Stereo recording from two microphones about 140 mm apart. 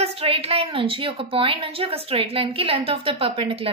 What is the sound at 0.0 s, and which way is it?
A woman's voice, 45° right (ahead or behind).